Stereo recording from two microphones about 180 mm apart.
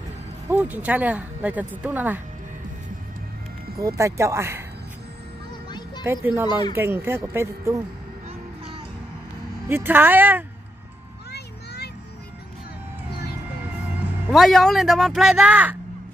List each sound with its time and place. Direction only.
0.5 s speech: 10° right (ahead or behind)
3.8 s speech: 15° right (ahead or behind)
5.7 s music: 25° left (ahead or behind)
6.0 s speech: 10° right (ahead or behind)
9.7 s speech: 10° right (ahead or behind)
11.3 s a sound: 65° left (ahead or behind)
14.3 s speech: centre (ahead or behind)